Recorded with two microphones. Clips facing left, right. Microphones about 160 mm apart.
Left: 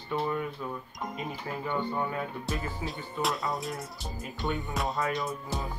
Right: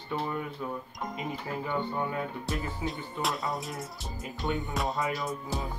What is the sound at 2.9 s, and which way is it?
Music, centre (ahead or behind).